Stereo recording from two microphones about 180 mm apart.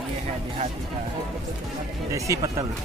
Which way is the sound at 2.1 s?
15° right (ahead or behind).